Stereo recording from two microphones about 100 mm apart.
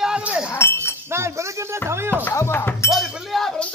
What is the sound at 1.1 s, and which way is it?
Speech, 30° right (ahead or behind).